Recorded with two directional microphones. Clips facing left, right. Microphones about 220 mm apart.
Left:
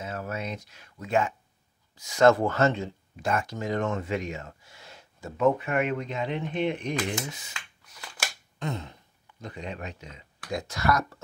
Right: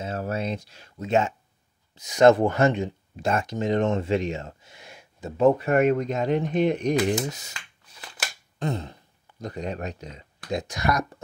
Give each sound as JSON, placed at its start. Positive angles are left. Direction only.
{"t": 0.0, "sound": "speech", "side_deg": -30}
{"t": 5.4, "sound": "speech", "side_deg": -35}
{"t": 8.5, "sound": "speech", "side_deg": -35}
{"t": 10.5, "sound": "speech", "side_deg": -20}